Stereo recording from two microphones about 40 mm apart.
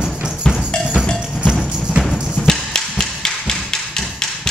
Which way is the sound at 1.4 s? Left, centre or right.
Centre.